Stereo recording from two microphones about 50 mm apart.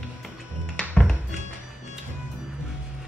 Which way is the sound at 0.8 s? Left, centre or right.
Centre.